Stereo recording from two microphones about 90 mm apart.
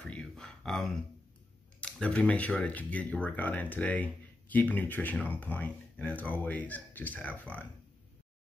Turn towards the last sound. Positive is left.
turn(degrees=15)  # may be behind; listen again after turning